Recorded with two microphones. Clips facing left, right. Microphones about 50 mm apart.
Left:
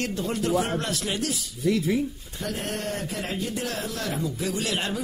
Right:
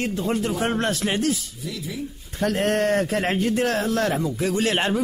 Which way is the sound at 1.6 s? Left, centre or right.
Left.